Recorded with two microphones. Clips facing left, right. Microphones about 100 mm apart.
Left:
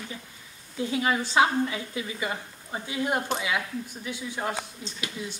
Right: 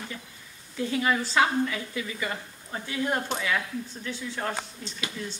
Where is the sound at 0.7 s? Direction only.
20° left (ahead or behind).